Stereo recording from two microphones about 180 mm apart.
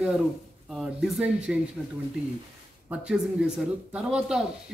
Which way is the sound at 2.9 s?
5° right (ahead or behind).